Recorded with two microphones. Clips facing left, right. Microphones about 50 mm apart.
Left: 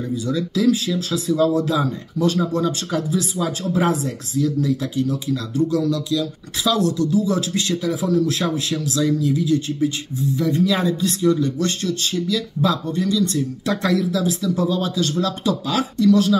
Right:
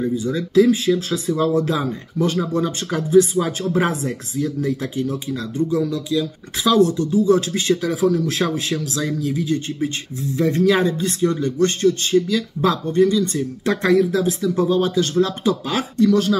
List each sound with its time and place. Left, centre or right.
0.1 s speech: right
5.7 s speech: centre